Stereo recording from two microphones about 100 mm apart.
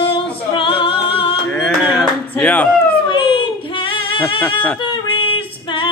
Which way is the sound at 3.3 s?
60° left (ahead or behind).